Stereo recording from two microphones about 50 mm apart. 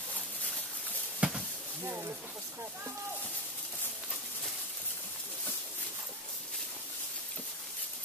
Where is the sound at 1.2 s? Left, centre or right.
Right.